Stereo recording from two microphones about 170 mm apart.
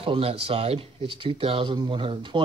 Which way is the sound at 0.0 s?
35° right (ahead or behind).